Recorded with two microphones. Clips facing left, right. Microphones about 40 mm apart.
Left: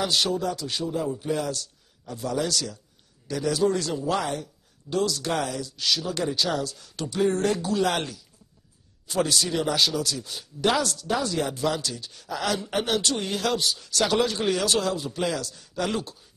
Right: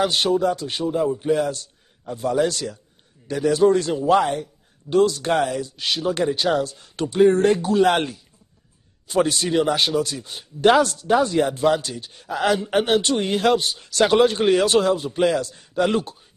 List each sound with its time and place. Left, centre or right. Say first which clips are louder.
0.0 s a man's voice: right 6 dB; right